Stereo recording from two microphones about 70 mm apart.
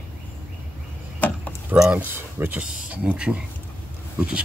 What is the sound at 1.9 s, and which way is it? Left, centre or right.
Speech, right.